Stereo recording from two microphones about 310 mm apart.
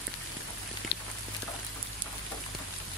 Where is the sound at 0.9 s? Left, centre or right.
Left.